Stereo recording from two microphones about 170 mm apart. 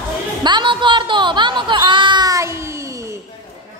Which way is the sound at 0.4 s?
25° right (ahead or behind).